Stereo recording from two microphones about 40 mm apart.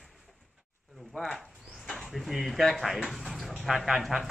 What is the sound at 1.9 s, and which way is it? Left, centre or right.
Speech, centre.